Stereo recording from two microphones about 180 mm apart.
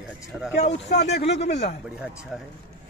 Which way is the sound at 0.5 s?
35° left (ahead or behind).